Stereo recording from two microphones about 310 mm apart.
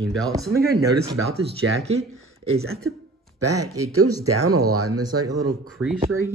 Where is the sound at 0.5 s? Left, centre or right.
Right.